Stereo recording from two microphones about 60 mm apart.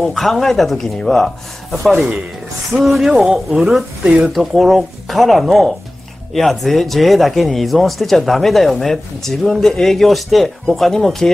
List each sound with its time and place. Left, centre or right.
0.0 s speech: centre
4.0 s speech: centre
4.3 s speech: centre